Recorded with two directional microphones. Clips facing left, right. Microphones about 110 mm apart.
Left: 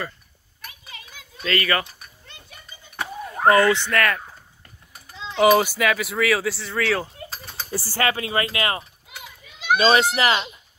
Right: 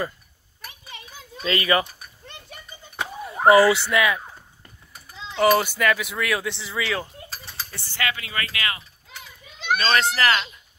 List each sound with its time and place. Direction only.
1.4 s speech: 20° right (ahead or behind)
3.3 s speech: 15° right (ahead or behind)
7.7 s speech: 35° left (ahead or behind)
9.1 s children playing: 10° left (ahead or behind)
9.8 s a child's voice: 15° left (ahead or behind)